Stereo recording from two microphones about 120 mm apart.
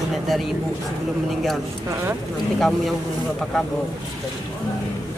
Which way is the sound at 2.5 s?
5° left (ahead or behind).